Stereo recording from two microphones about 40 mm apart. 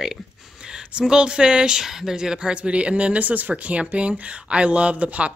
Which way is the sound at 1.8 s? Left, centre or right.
Centre.